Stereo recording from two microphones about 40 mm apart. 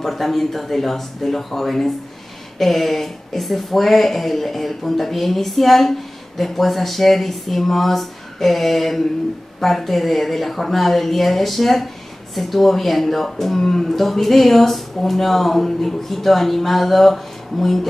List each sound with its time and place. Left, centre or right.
0.0 s speech: centre